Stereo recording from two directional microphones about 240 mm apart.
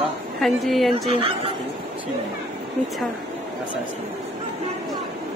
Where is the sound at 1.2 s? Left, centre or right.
Right.